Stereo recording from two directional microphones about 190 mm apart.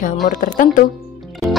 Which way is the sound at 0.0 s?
45° left (ahead or behind).